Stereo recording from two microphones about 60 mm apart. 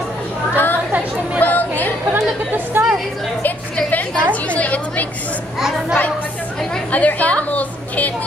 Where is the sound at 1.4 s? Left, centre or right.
Left.